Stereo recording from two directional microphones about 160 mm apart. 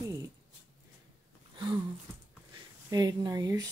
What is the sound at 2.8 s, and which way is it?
Speech, 25° right (ahead or behind).